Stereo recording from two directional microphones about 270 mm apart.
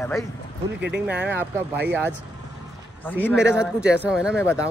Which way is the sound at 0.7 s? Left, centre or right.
Right.